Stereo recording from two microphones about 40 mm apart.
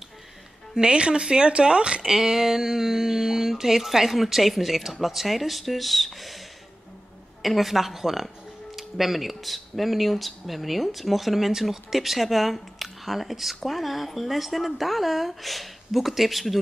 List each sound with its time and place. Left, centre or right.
0.7 s speech: right
2.0 s speech: centre
7.4 s speech: centre